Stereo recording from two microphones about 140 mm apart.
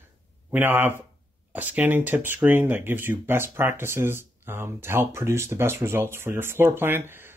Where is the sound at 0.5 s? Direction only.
15° right (ahead or behind).